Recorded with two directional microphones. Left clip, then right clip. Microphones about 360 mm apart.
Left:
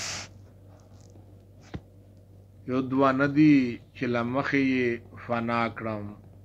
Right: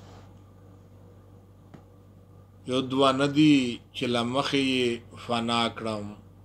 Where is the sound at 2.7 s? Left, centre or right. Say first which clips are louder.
Right 1 dB; centre.